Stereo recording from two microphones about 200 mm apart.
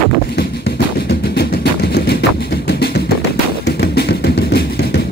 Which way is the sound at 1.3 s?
55° left (ahead or behind).